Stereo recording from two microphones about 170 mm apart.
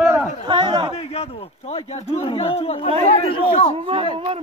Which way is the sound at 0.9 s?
35° left (ahead or behind).